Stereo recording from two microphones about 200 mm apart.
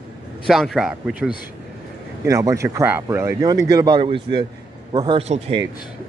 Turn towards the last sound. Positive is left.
turn(degrees=-30)  # may be behind; listen again after turning